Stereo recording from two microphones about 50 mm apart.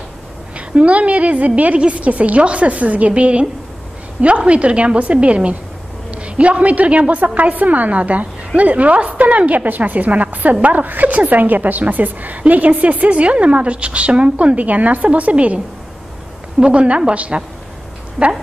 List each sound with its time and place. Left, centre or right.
0.6 s a woman's voice: right
4.5 s a woman's voice: right